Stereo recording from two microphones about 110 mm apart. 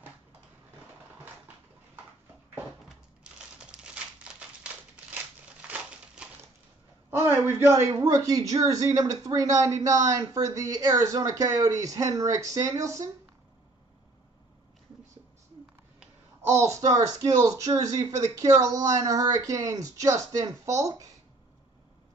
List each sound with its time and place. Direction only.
3.5 s typewriter: 10° right (ahead or behind)
5.6 s crumpling: 10° right (ahead or behind)
7.1 s a man's voice: 20° right (ahead or behind)
16.4 s speech: 25° right (ahead or behind)